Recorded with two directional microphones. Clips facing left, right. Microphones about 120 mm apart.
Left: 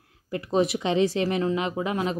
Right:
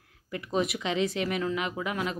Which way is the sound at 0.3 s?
35° left (ahead or behind).